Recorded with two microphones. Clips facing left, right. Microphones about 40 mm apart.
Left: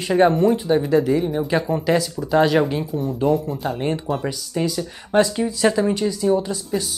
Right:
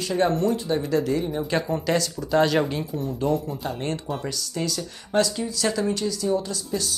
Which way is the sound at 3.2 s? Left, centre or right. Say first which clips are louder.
Left 5 dB; centre.